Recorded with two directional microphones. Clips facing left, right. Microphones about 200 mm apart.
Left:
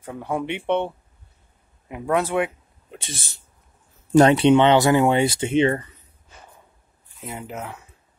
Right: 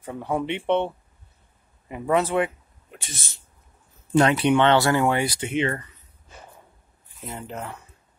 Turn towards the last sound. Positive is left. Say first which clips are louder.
# left 1 dB
turn(degrees=5)  # may be behind; listen again after turning